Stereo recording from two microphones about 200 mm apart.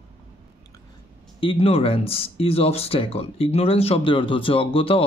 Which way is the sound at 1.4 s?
30° left (ahead or behind).